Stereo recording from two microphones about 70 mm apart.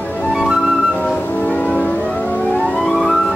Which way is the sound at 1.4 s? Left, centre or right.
Centre.